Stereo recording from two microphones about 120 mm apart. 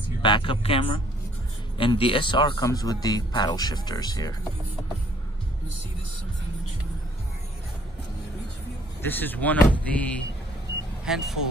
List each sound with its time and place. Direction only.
0.2 s speech: 45° left (ahead or behind)
2.6 s speech: 30° left (ahead or behind)
9.0 s speech: 15° left (ahead or behind)
11.1 s speech: 5° right (ahead or behind)